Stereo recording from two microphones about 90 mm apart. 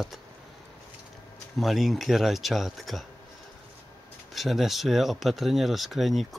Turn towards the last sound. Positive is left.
turn(degrees=0)  # may be behind; listen again after turning